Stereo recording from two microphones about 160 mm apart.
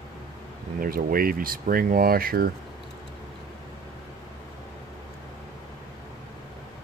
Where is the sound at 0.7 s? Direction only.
65° right (ahead or behind).